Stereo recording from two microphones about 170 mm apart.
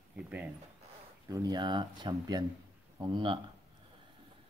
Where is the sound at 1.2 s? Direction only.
20° right (ahead or behind).